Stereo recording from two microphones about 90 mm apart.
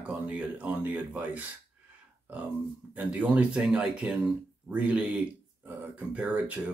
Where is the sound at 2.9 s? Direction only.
15° right (ahead or behind).